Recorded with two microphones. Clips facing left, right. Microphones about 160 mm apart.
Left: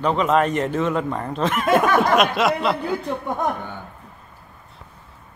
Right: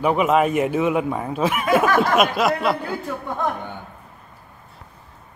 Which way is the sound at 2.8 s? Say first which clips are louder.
Left 3 dB; 20° left (ahead or behind).